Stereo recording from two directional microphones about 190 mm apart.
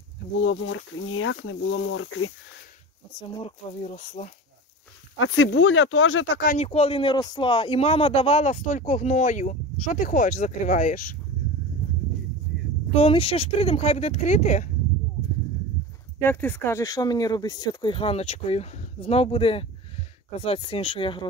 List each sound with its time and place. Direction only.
0.4 s speech: 90° left
3.2 s speech: 25° left (ahead or behind)
5.1 s speech: 90° left
6.6 s speech: 35° left (ahead or behind)
12.9 s speech: 30° left (ahead or behind)
16.2 s speech: 10° left (ahead or behind); by 21.3 s 25° left (ahead or behind)